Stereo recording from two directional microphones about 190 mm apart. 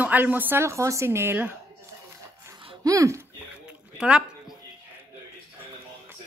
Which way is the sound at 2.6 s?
25° right (ahead or behind).